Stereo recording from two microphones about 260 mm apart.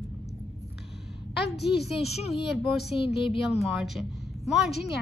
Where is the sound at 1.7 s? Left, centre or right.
Centre.